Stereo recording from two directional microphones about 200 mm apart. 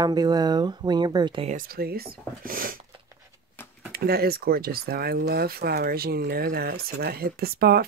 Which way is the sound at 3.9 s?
50° right (ahead or behind).